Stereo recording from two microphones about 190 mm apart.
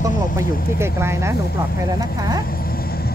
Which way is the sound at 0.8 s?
15° right (ahead or behind).